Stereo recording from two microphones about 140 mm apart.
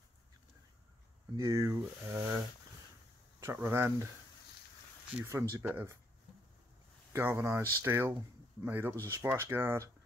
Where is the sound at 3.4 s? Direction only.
20° right (ahead or behind).